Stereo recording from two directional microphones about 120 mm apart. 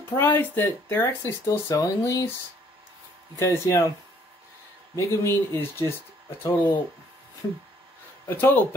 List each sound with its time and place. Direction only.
0.1 s speech: 20° left (ahead or behind)
3.3 s speech: 25° left (ahead or behind)
4.9 s speech: 25° left (ahead or behind)
8.3 s speech: 20° left (ahead or behind)